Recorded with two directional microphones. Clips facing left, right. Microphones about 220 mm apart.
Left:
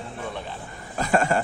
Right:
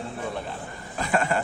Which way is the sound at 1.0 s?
40° left (ahead or behind).